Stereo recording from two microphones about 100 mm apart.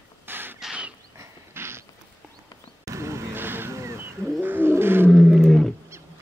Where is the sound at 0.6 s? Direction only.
5° right (ahead or behind).